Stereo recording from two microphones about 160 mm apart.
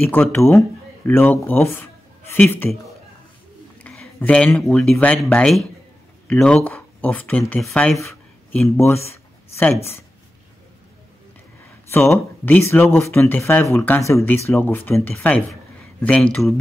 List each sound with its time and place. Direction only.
0.1 s speech: 15° left (ahead or behind)
3.8 s speech: 5° left (ahead or behind)
8.7 s speech: 15° left (ahead or behind)
9.1 s a sound: 10° left (ahead or behind)
11.9 s speech: 15° left (ahead or behind)